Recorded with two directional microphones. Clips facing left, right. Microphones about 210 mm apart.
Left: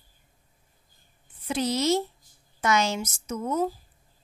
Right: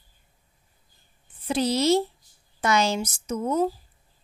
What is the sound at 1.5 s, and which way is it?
A woman's voice, 30° right (ahead or behind).